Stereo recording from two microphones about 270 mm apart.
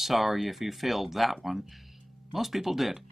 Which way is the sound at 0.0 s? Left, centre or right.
Centre.